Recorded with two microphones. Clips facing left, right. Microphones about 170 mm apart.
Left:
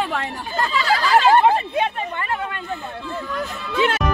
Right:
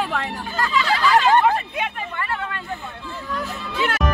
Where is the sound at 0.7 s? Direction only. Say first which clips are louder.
Even; 40° left (ahead or behind).